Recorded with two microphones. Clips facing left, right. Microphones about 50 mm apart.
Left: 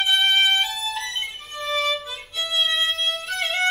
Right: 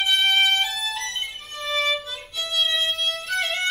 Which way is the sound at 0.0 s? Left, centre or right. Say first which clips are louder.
Left 1 dB; centre.